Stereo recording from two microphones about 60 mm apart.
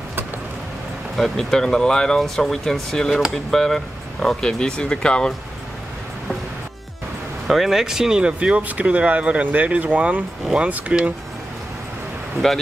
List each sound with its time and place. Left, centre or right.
1.1 s speech: centre
7.4 s speech: centre; by 11.1 s right
12.4 s speech: centre